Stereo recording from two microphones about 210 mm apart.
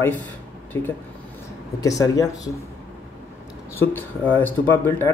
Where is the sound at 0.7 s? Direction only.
10° left (ahead or behind).